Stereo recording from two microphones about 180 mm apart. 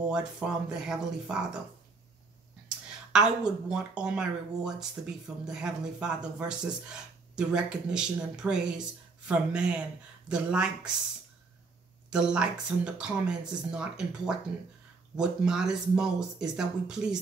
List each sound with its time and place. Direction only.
0.0 s speech: 5° right (ahead or behind)
3.1 s speech: 5° right (ahead or behind)
12.1 s speech: 5° right (ahead or behind)